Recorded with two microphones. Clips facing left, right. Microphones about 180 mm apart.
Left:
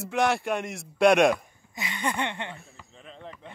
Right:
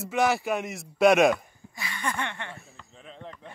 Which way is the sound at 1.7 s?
20° left (ahead or behind).